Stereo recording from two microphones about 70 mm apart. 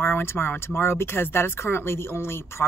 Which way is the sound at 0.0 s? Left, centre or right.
Left.